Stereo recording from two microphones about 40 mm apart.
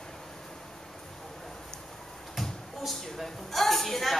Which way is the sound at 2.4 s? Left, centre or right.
Centre.